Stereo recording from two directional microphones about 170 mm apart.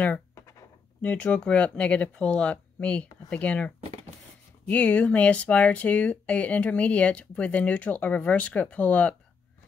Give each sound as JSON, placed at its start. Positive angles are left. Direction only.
{"t": 0.0, "sound": "speech", "side_deg": 15}